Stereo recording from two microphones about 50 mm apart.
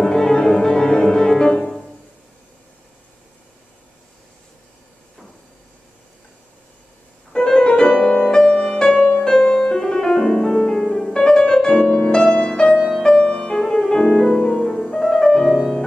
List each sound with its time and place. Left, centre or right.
0.0 s music: centre
7.3 s music: centre